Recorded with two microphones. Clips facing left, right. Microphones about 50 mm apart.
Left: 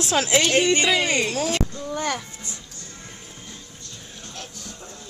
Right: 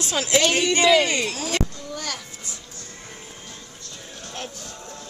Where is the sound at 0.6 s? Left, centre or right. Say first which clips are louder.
Right 2 dB; left.